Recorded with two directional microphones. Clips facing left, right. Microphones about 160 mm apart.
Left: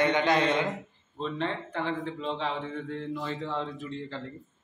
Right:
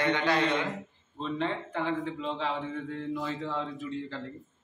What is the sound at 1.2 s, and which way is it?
A man's voice, 10° right (ahead or behind).